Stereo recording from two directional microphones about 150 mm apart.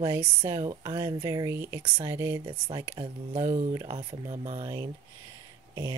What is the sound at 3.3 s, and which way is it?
Speech, 50° right (ahead or behind).